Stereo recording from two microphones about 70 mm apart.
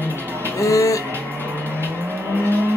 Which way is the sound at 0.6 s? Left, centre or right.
Left.